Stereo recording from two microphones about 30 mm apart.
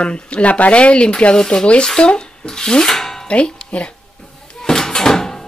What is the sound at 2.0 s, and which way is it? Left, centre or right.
Speech, left.